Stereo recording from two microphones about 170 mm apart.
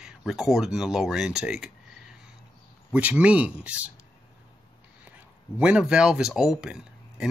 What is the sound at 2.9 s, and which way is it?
Speech, 10° right (ahead or behind).